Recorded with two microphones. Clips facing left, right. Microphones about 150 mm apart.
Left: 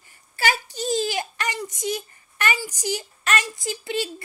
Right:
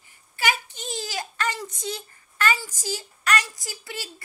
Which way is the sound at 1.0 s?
20° left (ahead or behind).